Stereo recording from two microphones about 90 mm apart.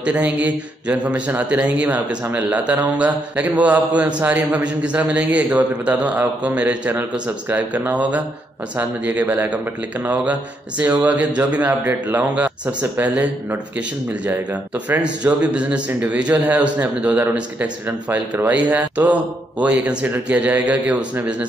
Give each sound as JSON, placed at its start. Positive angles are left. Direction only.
{"t": 0.0, "sound": "a man's voice", "side_deg": -15}